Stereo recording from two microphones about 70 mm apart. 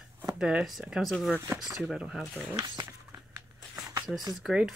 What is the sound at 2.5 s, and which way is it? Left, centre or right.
Speech, right.